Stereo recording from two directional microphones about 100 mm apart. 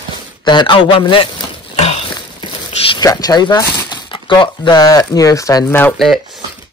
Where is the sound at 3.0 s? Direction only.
40° left (ahead or behind).